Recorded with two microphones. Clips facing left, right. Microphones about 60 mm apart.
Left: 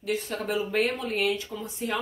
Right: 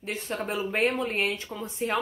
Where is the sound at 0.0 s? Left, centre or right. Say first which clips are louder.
Left 2 dB; right.